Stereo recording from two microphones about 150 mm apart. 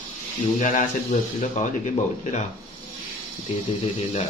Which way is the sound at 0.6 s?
55° left (ahead or behind).